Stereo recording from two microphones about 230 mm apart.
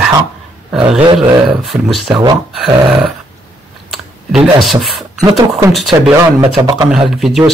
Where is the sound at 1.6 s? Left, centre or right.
Centre.